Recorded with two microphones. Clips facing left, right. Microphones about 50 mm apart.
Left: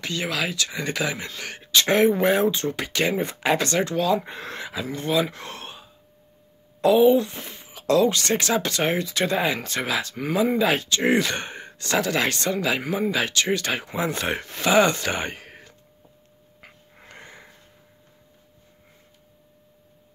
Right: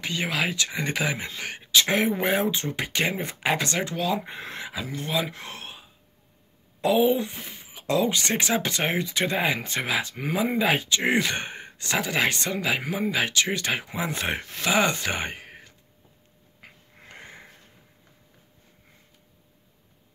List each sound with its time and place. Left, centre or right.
0.0 s speech: centre
1.7 s speech: centre
3.2 s speech: centre
16.6 s wheeze: centre
17.1 s sniff: centre